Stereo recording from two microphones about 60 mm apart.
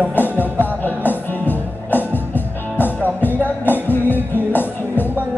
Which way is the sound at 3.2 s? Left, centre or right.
Left.